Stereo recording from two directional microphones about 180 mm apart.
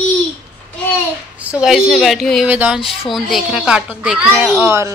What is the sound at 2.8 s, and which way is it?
Speech, 30° left (ahead or behind).